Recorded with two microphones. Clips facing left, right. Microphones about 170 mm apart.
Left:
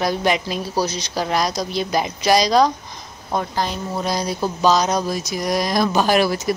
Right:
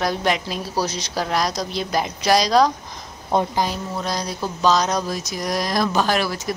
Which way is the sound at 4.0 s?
5° left (ahead or behind).